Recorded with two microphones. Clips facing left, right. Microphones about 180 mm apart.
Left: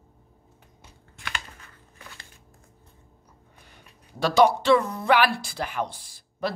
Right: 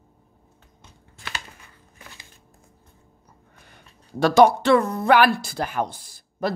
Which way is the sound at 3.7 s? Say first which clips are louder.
Right 12 dB; 50° right (ahead or behind).